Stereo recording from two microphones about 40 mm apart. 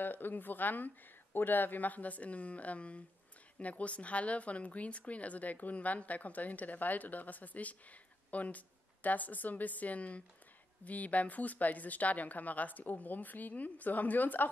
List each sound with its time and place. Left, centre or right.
0.0 s a woman's voice: left